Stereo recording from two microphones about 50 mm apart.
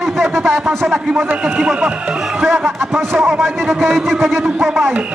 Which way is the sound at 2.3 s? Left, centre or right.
Centre.